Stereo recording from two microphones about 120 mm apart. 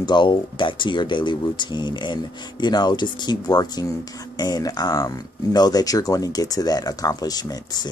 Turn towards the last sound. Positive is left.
turn(degrees=35)  # may be behind; listen again after turning